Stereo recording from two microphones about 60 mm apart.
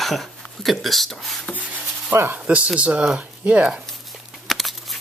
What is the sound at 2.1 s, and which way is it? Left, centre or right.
Speech, right.